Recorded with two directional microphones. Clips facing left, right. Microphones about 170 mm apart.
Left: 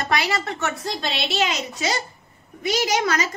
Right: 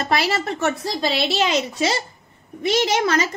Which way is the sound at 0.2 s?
25° right (ahead or behind).